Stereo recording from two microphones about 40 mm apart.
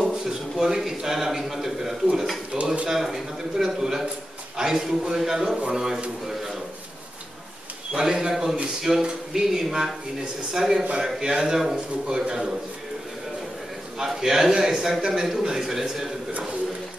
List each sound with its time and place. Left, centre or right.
0.0 s a man's voice: centre
2.5 s speech: right
2.9 s a man's voice: centre
7.9 s a man's voice: centre
8.9 s a man's voice: centre
13.9 s a man's voice: centre